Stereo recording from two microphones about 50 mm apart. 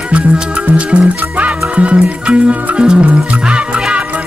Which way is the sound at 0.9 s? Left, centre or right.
Right.